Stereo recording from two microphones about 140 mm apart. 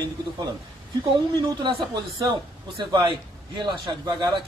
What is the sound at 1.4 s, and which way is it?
A man's voice, 35° right (ahead or behind).